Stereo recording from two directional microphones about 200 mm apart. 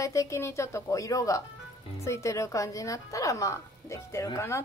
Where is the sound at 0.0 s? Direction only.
15° left (ahead or behind).